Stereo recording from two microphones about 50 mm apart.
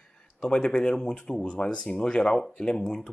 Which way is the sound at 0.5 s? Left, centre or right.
Centre.